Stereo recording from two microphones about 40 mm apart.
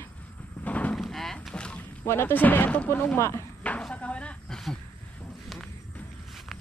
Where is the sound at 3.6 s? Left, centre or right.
Left.